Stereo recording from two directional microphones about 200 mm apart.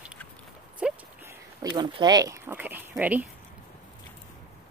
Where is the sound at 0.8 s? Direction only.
5° right (ahead or behind).